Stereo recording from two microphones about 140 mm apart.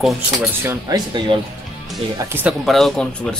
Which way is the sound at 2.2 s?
15° right (ahead or behind).